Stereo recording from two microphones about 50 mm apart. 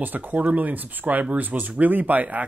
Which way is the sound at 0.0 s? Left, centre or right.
Right.